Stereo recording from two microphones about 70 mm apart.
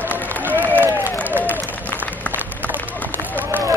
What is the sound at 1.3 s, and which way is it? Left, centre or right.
Applause, right.